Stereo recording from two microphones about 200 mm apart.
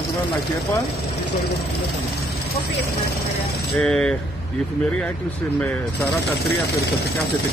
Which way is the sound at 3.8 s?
5° left (ahead or behind).